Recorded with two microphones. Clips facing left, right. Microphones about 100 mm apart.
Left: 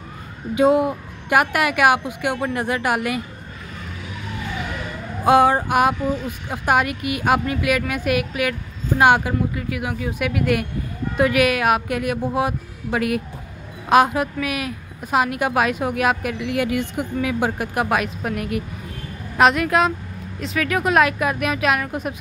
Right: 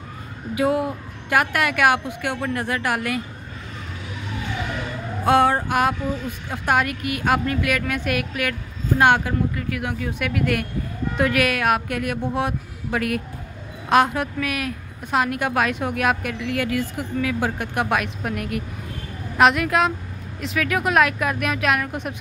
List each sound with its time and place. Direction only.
0.6 s a woman's voice: 20° left (ahead or behind)
5.2 s a woman's voice: 15° left (ahead or behind)
17.6 s speech: 5° left (ahead or behind)